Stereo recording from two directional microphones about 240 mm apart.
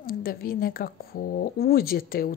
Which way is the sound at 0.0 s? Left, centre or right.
Left.